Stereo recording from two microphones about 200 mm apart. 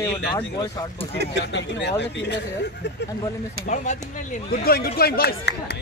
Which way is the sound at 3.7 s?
40° left (ahead or behind).